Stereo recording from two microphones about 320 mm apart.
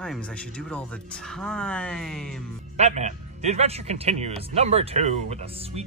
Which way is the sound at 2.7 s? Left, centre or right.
Right.